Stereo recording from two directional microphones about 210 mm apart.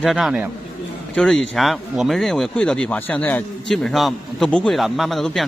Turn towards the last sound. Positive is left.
turn(degrees=0)  # may be behind; listen again after turning